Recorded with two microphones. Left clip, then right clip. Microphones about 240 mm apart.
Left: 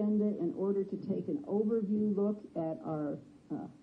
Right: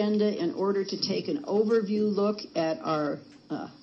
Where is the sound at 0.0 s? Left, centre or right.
Right.